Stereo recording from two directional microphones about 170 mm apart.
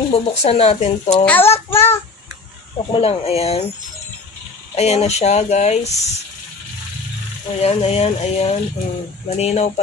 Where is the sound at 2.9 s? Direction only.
35° left (ahead or behind).